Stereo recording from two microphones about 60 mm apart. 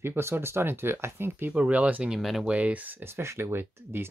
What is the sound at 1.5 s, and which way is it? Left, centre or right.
Speech, right.